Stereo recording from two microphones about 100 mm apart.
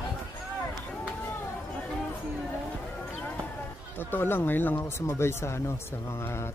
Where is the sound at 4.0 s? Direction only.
20° left (ahead or behind).